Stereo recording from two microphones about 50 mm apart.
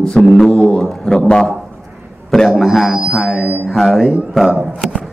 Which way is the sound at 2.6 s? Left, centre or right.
Centre.